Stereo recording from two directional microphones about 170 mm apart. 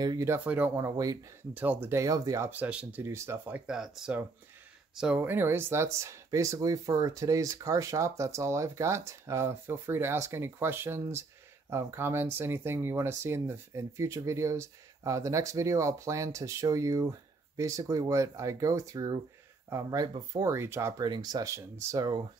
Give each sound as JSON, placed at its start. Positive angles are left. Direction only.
{"t": 0.0, "sound": "speech", "side_deg": -20}
{"t": 1.5, "sound": "speech", "side_deg": -10}